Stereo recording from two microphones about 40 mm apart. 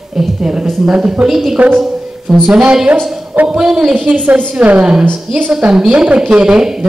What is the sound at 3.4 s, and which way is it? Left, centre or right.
Speech, right.